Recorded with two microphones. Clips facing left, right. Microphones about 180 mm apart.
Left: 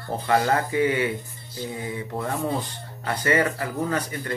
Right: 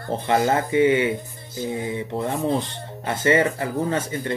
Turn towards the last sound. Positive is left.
turn(degrees=-25)  # may be behind; listen again after turning